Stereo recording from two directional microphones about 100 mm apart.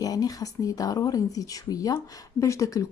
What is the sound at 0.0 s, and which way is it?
Speech, 40° left (ahead or behind).